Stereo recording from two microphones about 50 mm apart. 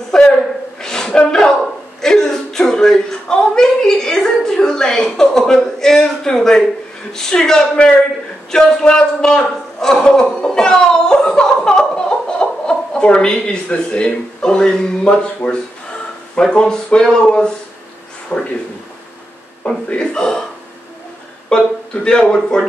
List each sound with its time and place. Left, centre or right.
0.1 s a sound: centre
2.0 s speech: centre
8.5 s a sound: centre
15.4 s speech: left
19.9 s speech: centre
21.5 s speech: centre